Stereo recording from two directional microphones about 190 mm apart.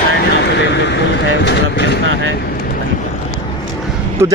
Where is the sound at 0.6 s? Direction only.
65° left (ahead or behind).